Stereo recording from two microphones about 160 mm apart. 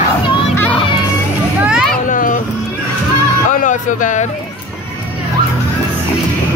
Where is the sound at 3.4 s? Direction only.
50° left (ahead or behind).